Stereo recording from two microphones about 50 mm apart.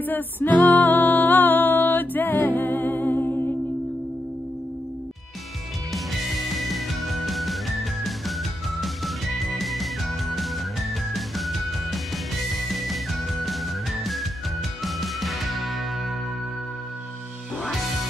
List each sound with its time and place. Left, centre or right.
0.0 s music: left
5.9 s music: centre